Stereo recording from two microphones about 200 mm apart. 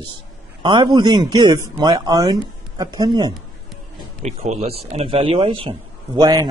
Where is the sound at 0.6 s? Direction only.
20° right (ahead or behind).